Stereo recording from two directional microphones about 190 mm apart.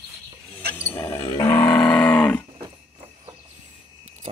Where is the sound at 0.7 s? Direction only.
10° left (ahead or behind).